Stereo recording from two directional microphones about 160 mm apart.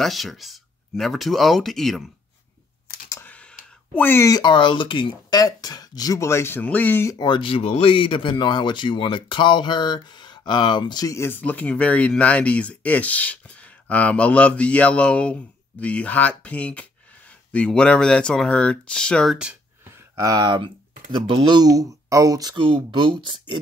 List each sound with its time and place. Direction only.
0.0 s speech: centre (ahead or behind)
3.1 s speech: 10° left (ahead or behind)
7.2 s speech: 30° left (ahead or behind); by 19.3 s 5° left (ahead or behind)
20.2 s speech: 25° right (ahead or behind)